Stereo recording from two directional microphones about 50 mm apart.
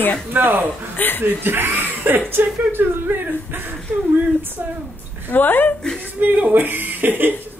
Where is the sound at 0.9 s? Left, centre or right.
Left.